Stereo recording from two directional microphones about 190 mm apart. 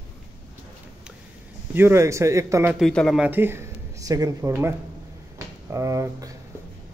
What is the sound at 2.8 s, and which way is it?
Speech, centre (ahead or behind).